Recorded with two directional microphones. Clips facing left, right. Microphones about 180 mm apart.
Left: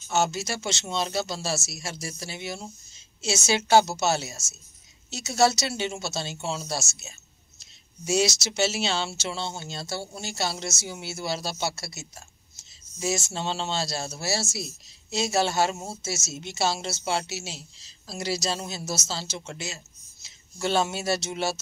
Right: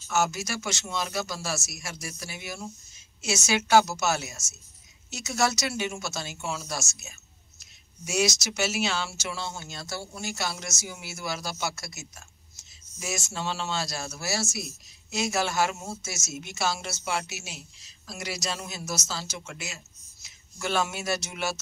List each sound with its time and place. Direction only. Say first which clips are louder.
0.1 s speech: left 1 dB; 25° left (ahead or behind)